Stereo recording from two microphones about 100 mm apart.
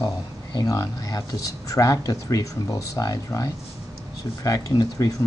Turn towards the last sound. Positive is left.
turn(degrees=35)  # may be behind; listen again after turning